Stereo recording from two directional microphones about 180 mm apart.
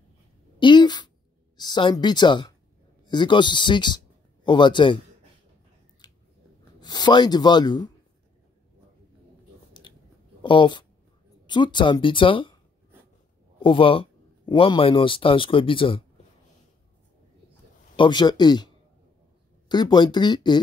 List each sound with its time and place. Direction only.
0.6 s a sound: 25° left (ahead or behind)
1.6 s speech: 25° left (ahead or behind)
6.8 s speech: 25° left (ahead or behind)
10.4 s speech: 25° left (ahead or behind)
13.6 s a man's voice: 30° left (ahead or behind)
17.9 s speech: 25° left (ahead or behind)
19.7 s speech: 25° left (ahead or behind)